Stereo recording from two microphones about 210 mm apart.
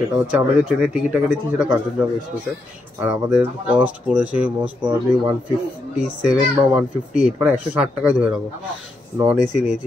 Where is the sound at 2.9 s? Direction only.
10° right (ahead or behind).